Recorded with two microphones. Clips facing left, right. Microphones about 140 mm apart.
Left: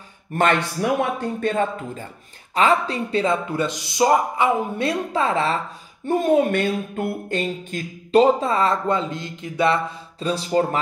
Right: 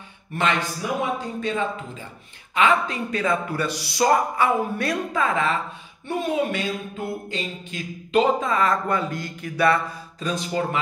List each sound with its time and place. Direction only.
0.3 s a man's voice: 50° left (ahead or behind)
2.5 s speech: 35° left (ahead or behind)
6.0 s a man's voice: 45° left (ahead or behind)
8.1 s speech: 35° left (ahead or behind)